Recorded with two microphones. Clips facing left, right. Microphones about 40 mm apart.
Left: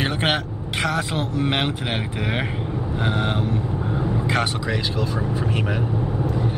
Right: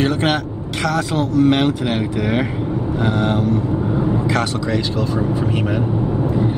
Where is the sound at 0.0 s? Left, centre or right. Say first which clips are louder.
Right 5 dB; centre.